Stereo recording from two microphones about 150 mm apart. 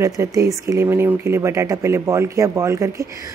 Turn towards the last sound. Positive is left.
turn(degrees=-20)  # may be behind; listen again after turning